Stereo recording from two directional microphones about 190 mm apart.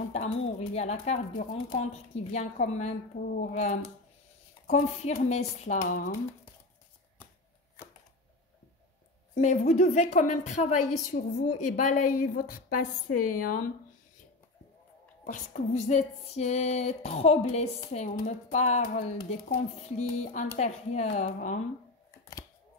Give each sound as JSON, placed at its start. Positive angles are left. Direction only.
{"t": 0.1, "sound": "a woman's voice", "side_deg": 35}
{"t": 9.3, "sound": "a woman's voice", "side_deg": 40}
{"t": 15.2, "sound": "speech", "side_deg": 45}